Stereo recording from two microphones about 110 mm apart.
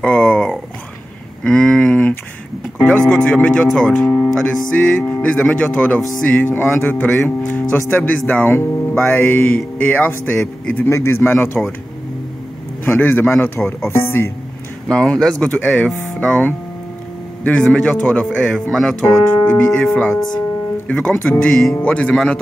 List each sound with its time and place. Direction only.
0.0 s a sound: 10° left (ahead or behind)
2.8 s speech: 15° left (ahead or behind)
10.9 s a man's voice: 25° left (ahead or behind)
12.8 s a man's voice: 20° left (ahead or behind)
14.9 s speech: 5° left (ahead or behind)
19.4 s speech: 15° left (ahead or behind)
19.7 s speech: 5° left (ahead or behind)